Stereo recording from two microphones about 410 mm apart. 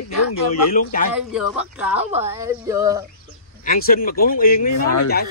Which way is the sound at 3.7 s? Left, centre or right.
Left.